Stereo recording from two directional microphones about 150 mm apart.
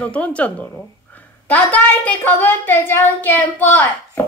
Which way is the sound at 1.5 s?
10° left (ahead or behind).